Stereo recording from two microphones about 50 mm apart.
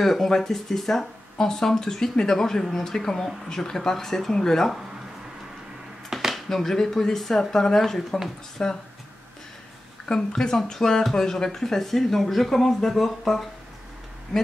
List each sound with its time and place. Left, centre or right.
0.0 s speech: centre
6.3 s speech: centre
8.6 s speech: centre
10.1 s speech: centre